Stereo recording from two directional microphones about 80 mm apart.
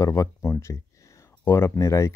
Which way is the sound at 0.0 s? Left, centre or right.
Left.